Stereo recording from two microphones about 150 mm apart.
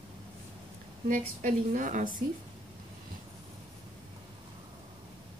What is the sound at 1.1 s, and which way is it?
A woman's voice, 65° right (ahead or behind).